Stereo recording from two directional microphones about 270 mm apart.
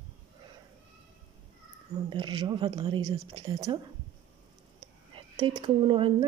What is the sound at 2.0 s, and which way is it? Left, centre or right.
Speech, centre.